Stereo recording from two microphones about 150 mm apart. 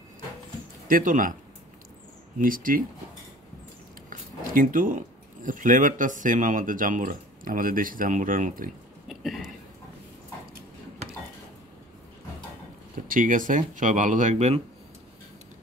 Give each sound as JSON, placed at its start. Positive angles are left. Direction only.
{"t": 0.8, "sound": "speech", "side_deg": -65}
{"t": 2.3, "sound": "speech", "side_deg": -65}
{"t": 4.1, "sound": "speech", "side_deg": -65}
{"t": 9.0, "sound": "a sound", "side_deg": 0}
{"t": 13.1, "sound": "speech", "side_deg": -65}